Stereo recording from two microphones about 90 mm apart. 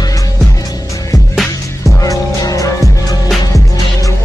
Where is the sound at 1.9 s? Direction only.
40° left (ahead or behind).